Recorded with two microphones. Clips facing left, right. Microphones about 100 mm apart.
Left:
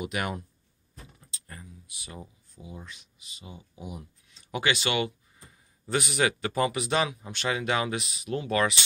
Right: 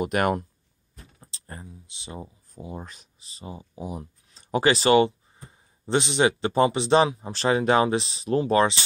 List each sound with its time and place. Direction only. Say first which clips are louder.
0.0 s speech: right 8 dB; 50° right (ahead or behind)
1.2 s speech: right 7 dB; 35° right (ahead or behind)
2.5 s speech: right 7 dB; 45° right (ahead or behind)